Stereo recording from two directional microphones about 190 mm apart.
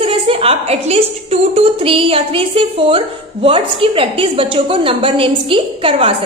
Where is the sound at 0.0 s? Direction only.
30° right (ahead or behind).